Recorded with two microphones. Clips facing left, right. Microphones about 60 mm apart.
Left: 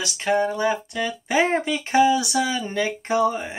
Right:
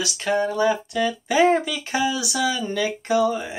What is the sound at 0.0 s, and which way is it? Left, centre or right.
Speech, left.